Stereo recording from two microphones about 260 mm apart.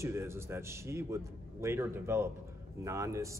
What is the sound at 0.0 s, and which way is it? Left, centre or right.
Speech, centre.